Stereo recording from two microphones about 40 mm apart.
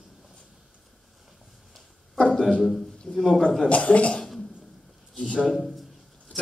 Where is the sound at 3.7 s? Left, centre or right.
Left.